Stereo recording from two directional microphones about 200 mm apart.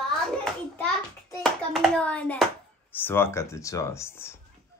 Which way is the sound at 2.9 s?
10° left (ahead or behind).